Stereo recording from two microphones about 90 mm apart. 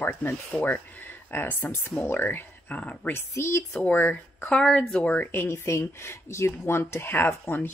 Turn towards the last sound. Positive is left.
turn(degrees=25)  # may be behind; listen again after turning